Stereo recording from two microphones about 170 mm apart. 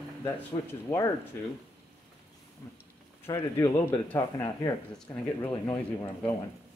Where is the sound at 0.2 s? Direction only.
15° left (ahead or behind).